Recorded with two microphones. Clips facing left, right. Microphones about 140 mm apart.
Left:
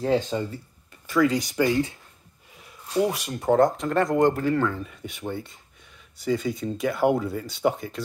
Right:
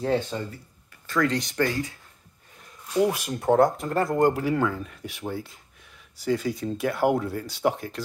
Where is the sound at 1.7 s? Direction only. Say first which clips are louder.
Left 6 dB; 25° left (ahead or behind).